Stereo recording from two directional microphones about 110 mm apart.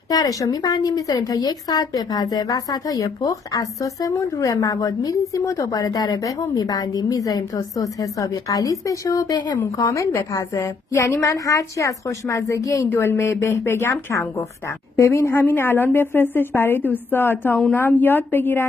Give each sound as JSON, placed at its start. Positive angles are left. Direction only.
{"t": 0.1, "sound": "a woman's voice", "side_deg": 35}
{"t": 12.9, "sound": "a woman's voice", "side_deg": 20}